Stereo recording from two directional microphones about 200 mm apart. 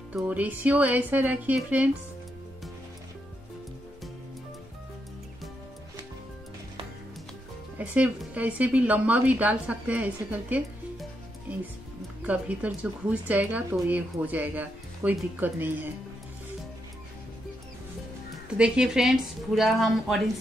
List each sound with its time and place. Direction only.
0.1 s speech: 10° right (ahead or behind)
7.7 s speech: 10° right (ahead or behind)
18.6 s a woman's voice: 5° right (ahead or behind)